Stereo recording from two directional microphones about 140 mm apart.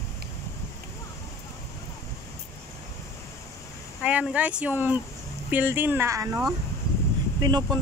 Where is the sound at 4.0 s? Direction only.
10° right (ahead or behind).